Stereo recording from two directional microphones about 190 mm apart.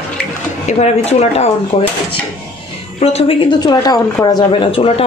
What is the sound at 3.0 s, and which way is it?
A woman's voice, 30° left (ahead or behind).